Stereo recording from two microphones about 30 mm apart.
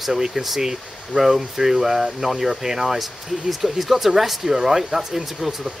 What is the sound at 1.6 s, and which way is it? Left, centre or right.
Speech, centre.